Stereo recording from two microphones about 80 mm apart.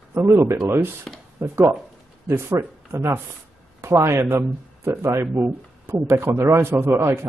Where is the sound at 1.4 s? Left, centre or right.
Right.